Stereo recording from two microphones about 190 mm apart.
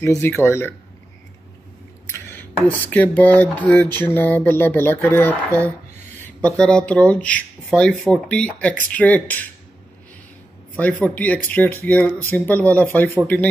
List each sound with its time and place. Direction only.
0.0 s speech: 15° left (ahead or behind)
2.0 s a sound: 10° left (ahead or behind)
2.9 s speech: 10° left (ahead or behind)
10.8 s speech: 5° left (ahead or behind)